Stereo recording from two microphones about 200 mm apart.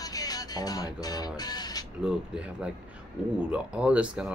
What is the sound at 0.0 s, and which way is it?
Speech, 20° left (ahead or behind).